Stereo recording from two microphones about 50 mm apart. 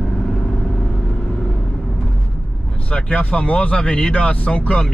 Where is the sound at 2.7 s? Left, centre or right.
Left.